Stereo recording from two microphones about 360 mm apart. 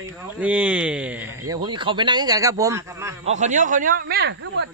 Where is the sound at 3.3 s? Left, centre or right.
Centre.